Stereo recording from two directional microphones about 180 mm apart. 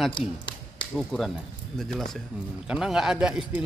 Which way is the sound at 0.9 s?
Centre (ahead or behind).